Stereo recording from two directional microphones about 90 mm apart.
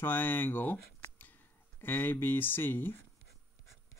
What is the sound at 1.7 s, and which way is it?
Speech, 25° left (ahead or behind).